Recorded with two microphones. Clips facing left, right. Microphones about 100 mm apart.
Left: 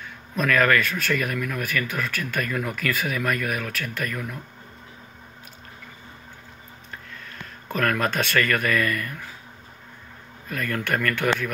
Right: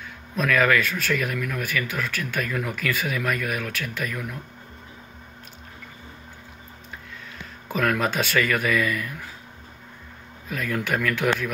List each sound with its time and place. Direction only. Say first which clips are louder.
0.4 s speech: even; centre (ahead or behind)
7.6 s speech: even; 5° right (ahead or behind)
10.5 s speech: even; 5° right (ahead or behind)